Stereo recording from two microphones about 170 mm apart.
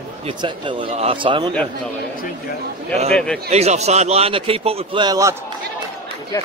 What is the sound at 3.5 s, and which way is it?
A man's voice, 40° right (ahead or behind).